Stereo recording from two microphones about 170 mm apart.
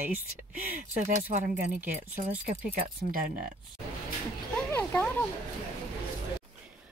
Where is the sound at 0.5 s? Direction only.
45° right (ahead or behind).